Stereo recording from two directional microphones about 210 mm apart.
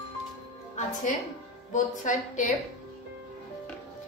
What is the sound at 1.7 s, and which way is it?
Speech, 35° left (ahead or behind).